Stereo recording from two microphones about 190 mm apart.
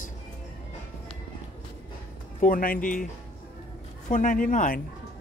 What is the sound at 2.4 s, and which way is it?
Speech, 45° left (ahead or behind).